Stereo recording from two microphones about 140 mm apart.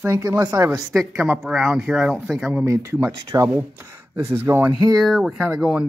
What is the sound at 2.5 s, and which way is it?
Speech, 15° right (ahead or behind).